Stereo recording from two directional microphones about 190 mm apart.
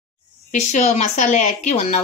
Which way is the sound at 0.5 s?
40° left (ahead or behind).